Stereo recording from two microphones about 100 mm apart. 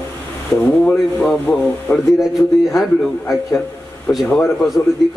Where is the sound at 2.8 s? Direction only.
Centre (ahead or behind).